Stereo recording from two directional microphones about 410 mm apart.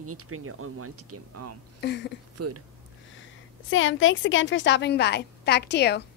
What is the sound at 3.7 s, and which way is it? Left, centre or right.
A woman's voice, left.